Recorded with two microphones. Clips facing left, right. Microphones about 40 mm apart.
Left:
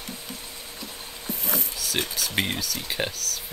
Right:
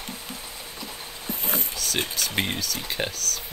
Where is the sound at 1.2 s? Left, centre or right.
Right.